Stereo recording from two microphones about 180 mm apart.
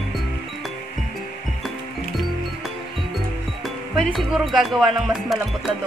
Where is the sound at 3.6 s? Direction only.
Centre (ahead or behind).